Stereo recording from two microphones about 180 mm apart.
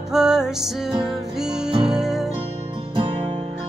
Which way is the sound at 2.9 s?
30° right (ahead or behind).